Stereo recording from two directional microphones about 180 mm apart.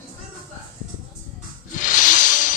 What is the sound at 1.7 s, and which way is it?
Snake, 45° left (ahead or behind).